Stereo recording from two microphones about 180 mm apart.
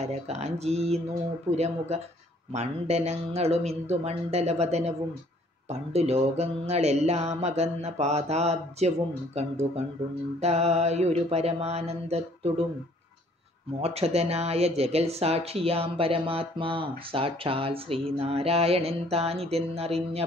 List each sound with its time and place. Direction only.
0.0 s speech: 35° right (ahead or behind)
13.7 s speech: 35° right (ahead or behind)